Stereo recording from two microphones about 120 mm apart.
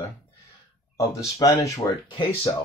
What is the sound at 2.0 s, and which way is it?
Speech, 45° left (ahead or behind).